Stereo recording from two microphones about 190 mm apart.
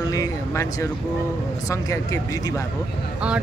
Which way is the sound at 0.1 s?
20° left (ahead or behind).